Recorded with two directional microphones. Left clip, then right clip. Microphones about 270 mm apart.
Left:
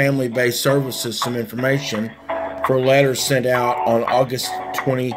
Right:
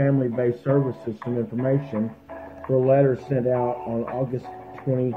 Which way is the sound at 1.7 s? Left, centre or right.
Left.